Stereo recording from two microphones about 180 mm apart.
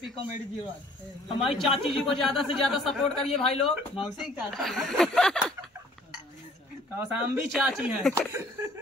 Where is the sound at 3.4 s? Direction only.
35° left (ahead or behind).